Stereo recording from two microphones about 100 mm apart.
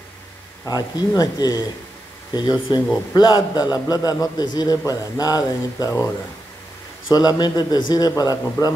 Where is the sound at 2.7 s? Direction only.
50° left (ahead or behind); by 6.0 s 35° left (ahead or behind).